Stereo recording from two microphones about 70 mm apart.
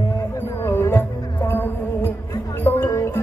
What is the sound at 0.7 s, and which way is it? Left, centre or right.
Music, left.